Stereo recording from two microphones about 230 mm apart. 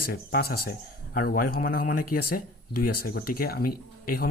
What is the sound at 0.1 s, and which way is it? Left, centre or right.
Speech, left.